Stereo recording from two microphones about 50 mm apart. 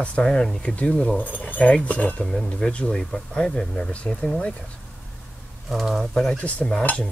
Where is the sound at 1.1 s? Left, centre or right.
Left.